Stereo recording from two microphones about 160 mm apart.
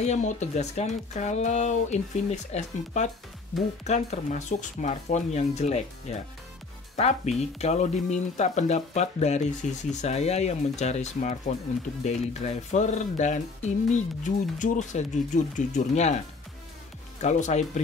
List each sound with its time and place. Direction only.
0.0 s speech: 45° left (ahead or behind)
17.2 s speech: 45° left (ahead or behind)